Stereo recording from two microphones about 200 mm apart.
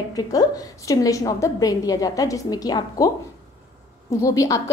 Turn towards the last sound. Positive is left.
turn(degrees=15)  # may be behind; listen again after turning